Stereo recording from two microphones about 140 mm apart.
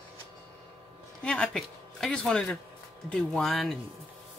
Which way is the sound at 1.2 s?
5° left (ahead or behind).